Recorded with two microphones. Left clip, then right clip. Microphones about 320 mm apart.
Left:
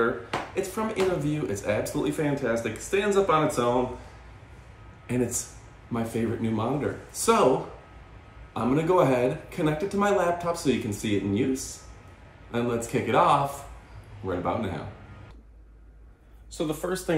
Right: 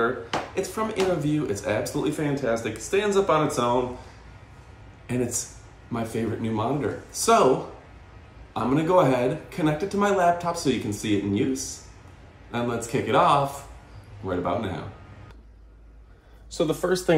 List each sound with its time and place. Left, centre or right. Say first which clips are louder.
0.6 s speech: right 1 dB; centre
5.0 s speech: even; centre
8.5 s speech: right 2 dB; centre
16.5 s speech: right 6 dB; right